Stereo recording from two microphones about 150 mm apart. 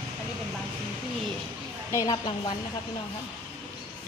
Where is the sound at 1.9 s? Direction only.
25° left (ahead or behind).